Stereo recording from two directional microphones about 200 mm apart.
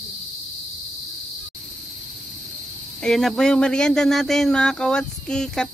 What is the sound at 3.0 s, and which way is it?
Speech, centre (ahead or behind).